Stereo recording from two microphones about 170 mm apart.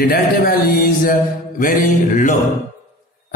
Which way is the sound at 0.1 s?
65° left (ahead or behind).